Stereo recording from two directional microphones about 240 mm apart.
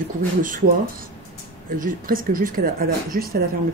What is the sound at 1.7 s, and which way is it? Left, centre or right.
Speech, right.